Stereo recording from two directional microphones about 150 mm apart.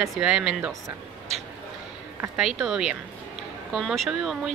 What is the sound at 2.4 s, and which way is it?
Speech, centre (ahead or behind).